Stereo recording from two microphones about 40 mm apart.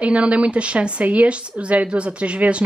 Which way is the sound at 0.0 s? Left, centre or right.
Right.